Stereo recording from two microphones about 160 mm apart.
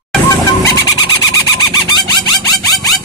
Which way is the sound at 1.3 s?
20° left (ahead or behind).